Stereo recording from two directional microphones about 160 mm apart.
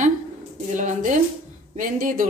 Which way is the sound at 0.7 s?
50° right (ahead or behind).